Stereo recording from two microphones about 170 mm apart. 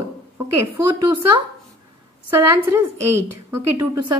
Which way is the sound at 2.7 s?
15° right (ahead or behind).